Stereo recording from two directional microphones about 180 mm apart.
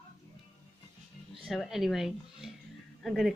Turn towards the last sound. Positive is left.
turn(degrees=0)  # may be behind; listen again after turning